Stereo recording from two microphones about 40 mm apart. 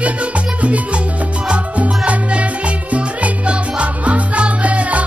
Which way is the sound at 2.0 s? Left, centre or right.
Right.